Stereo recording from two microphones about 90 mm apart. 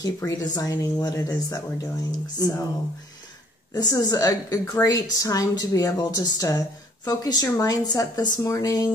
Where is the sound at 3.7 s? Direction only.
45° left (ahead or behind).